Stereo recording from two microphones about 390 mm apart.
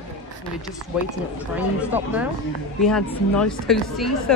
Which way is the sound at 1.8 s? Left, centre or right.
Centre.